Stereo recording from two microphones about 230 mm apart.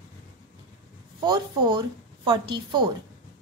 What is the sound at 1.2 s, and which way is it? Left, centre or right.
A woman's voice, centre.